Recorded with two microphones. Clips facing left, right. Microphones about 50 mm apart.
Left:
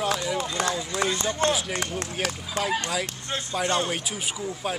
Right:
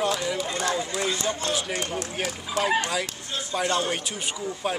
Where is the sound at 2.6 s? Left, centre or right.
Left.